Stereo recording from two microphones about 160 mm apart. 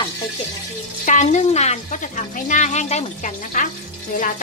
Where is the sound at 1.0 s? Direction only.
50° left (ahead or behind).